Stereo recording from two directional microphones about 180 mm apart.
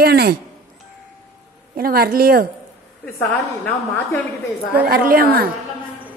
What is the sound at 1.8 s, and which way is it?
Speech, 55° right (ahead or behind).